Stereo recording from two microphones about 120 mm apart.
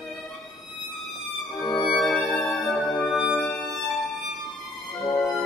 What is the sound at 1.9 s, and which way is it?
Music, centre (ahead or behind).